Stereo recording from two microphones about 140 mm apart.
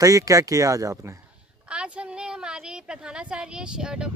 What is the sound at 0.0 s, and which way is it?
Speech, 25° right (ahead or behind).